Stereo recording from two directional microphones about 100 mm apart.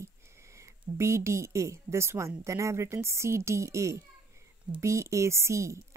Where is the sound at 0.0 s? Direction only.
30° right (ahead or behind).